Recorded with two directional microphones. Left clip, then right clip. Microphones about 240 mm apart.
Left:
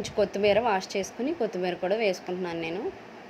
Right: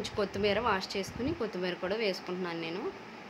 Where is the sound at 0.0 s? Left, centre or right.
Centre.